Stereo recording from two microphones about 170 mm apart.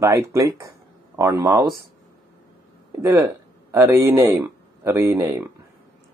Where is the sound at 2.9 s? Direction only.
15° right (ahead or behind).